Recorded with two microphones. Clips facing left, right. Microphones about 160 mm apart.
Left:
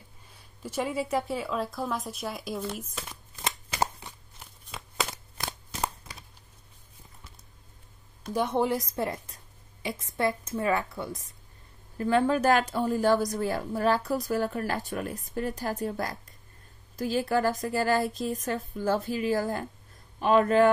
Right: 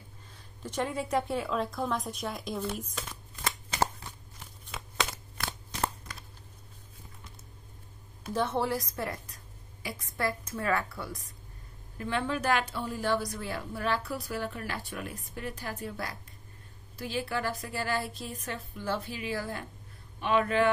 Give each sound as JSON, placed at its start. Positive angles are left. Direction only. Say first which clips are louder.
{"t": 0.3, "sound": "speech", "louder": "left 2 dB", "side_deg": 10}
{"t": 4.6, "sound": "a sound", "louder": "left 1 dB", "side_deg": 0}
{"t": 8.3, "sound": "a woman's voice", "louder": "left 3 dB", "side_deg": 15}
{"t": 12.0, "sound": "a woman's voice", "louder": "left 8 dB", "side_deg": 40}